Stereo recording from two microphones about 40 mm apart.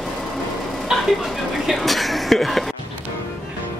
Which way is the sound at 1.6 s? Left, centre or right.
Centre.